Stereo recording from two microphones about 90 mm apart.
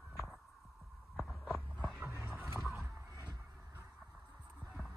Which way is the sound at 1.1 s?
Centre (ahead or behind).